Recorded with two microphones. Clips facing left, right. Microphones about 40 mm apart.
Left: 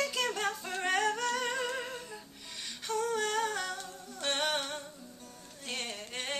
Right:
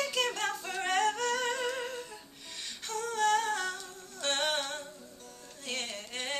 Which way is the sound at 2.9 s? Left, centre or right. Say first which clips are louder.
Right 3 dB; centre.